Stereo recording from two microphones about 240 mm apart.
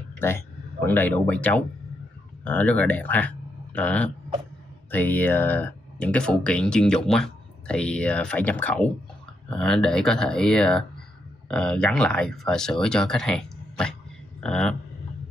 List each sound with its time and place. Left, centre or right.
0.8 s speech: centre